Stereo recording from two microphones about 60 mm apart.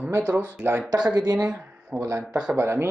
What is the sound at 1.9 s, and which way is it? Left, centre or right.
Speech, right.